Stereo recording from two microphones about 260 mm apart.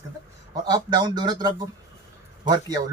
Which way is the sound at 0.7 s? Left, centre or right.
Centre.